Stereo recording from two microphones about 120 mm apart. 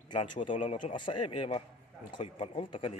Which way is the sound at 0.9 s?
50° left (ahead or behind).